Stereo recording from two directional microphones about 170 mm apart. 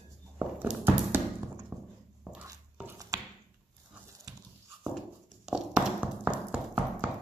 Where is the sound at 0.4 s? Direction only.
10° right (ahead or behind).